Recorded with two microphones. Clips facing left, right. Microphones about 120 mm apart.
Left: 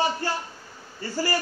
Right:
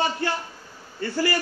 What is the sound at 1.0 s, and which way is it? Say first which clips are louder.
Speech: right 4 dB; 60° right (ahead or behind).